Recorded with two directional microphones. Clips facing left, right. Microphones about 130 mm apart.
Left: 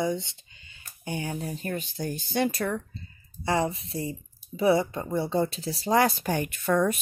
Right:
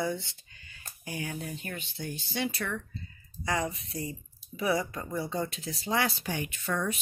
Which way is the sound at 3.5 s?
30° left (ahead or behind).